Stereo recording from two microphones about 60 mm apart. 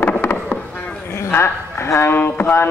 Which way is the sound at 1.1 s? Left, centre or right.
Left.